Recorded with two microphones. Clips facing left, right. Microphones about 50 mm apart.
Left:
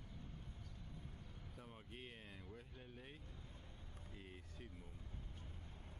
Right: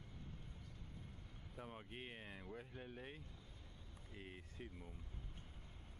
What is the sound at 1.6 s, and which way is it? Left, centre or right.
Speech, right.